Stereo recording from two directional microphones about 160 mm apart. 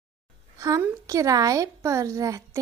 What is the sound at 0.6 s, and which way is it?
A woman's voice, 20° right (ahead or behind).